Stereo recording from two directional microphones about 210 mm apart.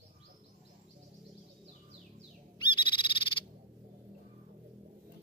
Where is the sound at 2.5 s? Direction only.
20° left (ahead or behind).